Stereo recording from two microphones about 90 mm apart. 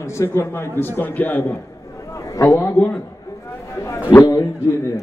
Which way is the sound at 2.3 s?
35° left (ahead or behind).